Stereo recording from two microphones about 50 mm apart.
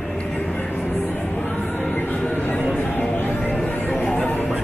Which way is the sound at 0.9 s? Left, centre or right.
Left.